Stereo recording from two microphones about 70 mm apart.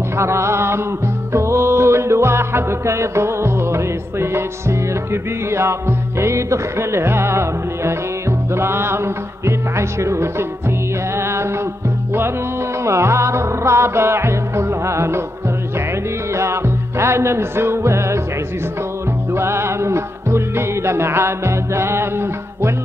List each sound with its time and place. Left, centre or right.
0.2 s a sound: right
1.3 s music: right
12.8 s music: right
16.3 s music: right
19.3 s music: right